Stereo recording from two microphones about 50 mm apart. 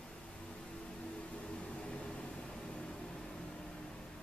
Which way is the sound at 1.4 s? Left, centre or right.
Centre.